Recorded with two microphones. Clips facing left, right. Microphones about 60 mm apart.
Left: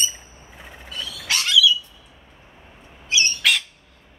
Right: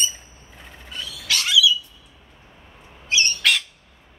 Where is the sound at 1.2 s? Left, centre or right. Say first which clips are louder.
Even; left.